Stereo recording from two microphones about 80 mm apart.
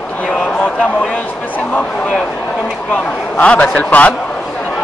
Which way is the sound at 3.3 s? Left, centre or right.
Centre.